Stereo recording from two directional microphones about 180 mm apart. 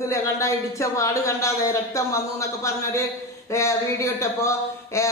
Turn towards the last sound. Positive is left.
turn(degrees=15)  # may be behind; listen again after turning